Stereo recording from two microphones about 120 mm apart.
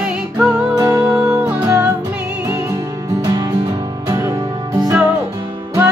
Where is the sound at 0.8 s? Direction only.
25° right (ahead or behind).